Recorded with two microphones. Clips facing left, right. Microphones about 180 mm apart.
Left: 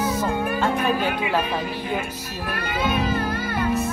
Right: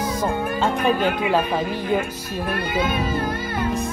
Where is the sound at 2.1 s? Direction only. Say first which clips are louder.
Right 4 dB; 10° right (ahead or behind).